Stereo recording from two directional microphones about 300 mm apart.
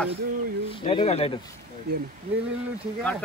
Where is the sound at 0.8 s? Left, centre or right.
Centre.